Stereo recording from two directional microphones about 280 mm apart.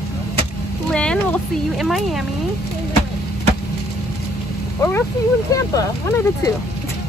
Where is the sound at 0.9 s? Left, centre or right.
Centre.